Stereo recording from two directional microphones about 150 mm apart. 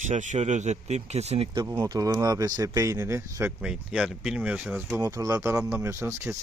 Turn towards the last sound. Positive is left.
turn(degrees=-15)  # may be behind; listen again after turning